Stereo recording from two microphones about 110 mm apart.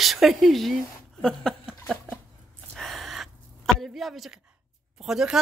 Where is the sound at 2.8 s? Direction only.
Centre (ahead or behind).